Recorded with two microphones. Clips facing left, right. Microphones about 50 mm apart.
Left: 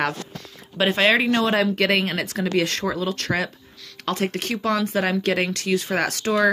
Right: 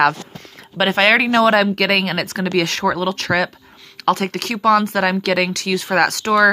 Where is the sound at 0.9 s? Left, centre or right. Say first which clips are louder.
Right 5 dB; right.